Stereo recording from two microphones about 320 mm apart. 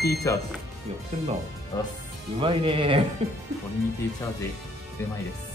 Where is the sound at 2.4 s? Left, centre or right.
Centre.